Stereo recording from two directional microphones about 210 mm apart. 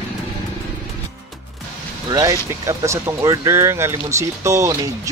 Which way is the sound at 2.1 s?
15° right (ahead or behind).